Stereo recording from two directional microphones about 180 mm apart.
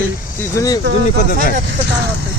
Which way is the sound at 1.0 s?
50° left (ahead or behind).